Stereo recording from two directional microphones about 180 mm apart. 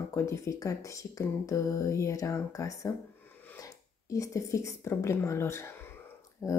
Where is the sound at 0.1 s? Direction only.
15° left (ahead or behind).